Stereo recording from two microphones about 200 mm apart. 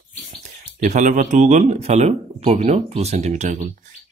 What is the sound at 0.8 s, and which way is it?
Speech, 40° right (ahead or behind).